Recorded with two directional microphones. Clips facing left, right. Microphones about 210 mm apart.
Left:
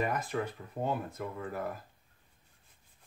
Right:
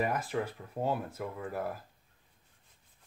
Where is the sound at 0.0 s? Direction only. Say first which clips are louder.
Right 1 dB; 5° right (ahead or behind).